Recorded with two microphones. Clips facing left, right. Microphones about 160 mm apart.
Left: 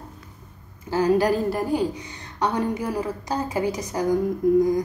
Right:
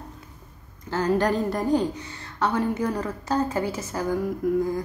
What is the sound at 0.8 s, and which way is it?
A woman's voice, 10° left (ahead or behind).